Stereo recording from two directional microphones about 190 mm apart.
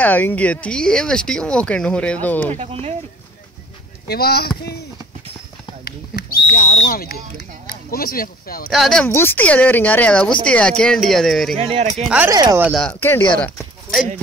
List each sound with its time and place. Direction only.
0.0 s speech: 10° left (ahead or behind)
2.5 s speech: 35° right (ahead or behind)
4.1 s speech: 55° left (ahead or behind)
5.9 s a sound: 50° left (ahead or behind)
6.8 s speech: 50° left (ahead or behind)
8.6 s speech: centre (ahead or behind)
12.3 s speech: 20° right (ahead or behind)
12.6 s speech: 5° left (ahead or behind)